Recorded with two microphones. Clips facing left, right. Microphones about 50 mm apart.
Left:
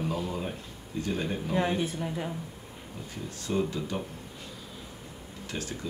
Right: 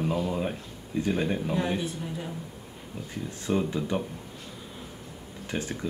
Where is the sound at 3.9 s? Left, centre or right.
Centre.